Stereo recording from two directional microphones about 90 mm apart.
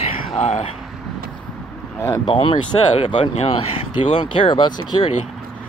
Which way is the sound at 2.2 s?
75° left (ahead or behind).